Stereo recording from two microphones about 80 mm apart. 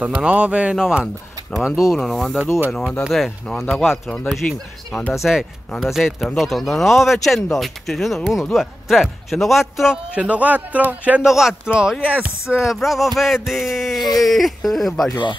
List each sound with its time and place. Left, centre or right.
0.0 s speech: centre
10.1 s speech: centre
11.2 s speech: centre